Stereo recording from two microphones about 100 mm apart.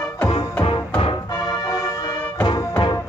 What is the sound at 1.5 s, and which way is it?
Music, 30° left (ahead or behind).